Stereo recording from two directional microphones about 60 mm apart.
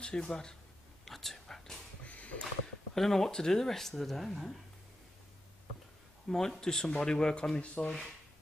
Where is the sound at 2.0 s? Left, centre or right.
Left.